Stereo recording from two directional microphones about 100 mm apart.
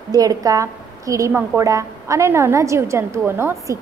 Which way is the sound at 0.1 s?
40° right (ahead or behind).